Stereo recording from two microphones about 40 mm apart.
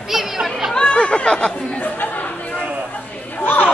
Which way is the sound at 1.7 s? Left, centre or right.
Left.